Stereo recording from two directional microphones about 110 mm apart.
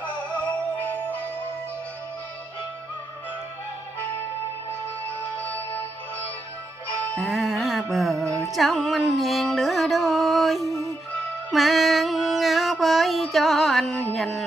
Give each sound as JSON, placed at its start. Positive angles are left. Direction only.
{"t": 5.4, "sound": "music", "side_deg": 15}
{"t": 7.2, "sound": "music", "side_deg": -5}